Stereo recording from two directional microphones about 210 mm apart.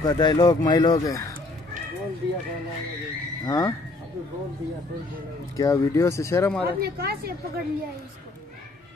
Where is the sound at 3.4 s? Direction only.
20° left (ahead or behind).